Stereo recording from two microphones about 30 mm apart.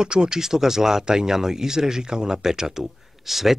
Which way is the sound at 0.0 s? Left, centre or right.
Right.